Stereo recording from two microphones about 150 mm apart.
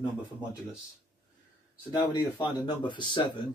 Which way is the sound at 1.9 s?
30° left (ahead or behind).